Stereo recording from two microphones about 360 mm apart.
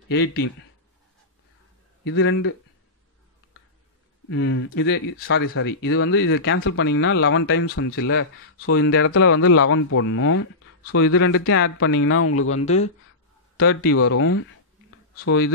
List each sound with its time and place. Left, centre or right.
0.1 s a man's voice: left
2.0 s speech: left
4.3 s speech: left
12.6 s speech: centre
13.6 s a man's voice: left